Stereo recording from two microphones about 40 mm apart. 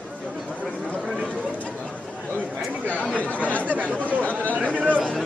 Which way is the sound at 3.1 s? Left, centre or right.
Left.